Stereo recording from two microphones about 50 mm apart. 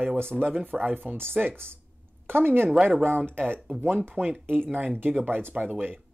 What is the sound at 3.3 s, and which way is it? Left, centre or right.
Speech, right.